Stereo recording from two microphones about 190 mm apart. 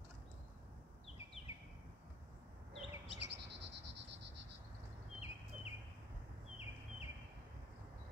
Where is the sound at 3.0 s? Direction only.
65° right (ahead or behind).